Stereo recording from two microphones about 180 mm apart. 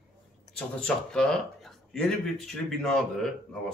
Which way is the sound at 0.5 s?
5° left (ahead or behind).